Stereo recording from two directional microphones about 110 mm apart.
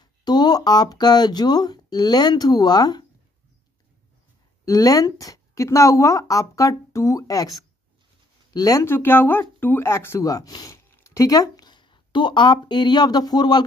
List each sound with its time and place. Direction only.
0.0 s speech: 40° left (ahead or behind)
4.6 s speech: 35° left (ahead or behind)
8.5 s speech: 30° left (ahead or behind)
8.9 s speech: 20° left (ahead or behind); by 13.7 s 40° left (ahead or behind)